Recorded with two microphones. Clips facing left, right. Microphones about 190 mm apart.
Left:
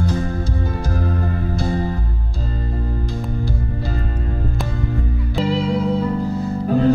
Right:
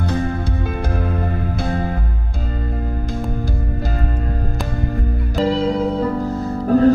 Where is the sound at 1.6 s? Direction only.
55° right (ahead or behind).